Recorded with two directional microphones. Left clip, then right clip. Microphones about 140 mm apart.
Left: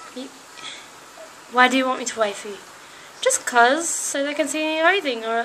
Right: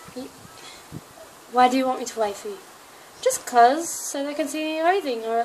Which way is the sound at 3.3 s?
15° right (ahead or behind).